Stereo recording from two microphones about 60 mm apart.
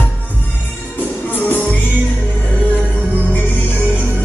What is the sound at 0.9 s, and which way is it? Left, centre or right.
Music, left.